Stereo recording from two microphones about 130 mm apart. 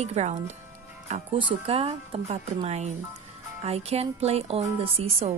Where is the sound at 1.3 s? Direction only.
45° right (ahead or behind).